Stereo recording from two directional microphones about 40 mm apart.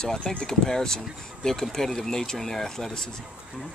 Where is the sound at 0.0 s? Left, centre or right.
Centre.